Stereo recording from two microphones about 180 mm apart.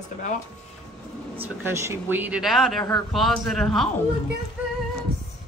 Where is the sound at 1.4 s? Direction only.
15° right (ahead or behind).